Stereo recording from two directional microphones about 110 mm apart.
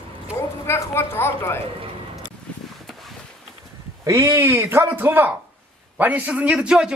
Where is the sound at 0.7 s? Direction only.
25° left (ahead or behind).